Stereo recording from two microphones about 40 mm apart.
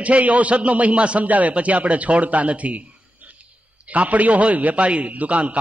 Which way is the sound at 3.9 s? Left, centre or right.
Right.